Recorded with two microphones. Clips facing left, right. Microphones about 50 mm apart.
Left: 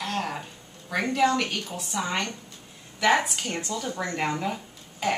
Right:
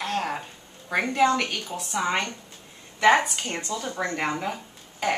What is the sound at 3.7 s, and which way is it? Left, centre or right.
Speech, centre.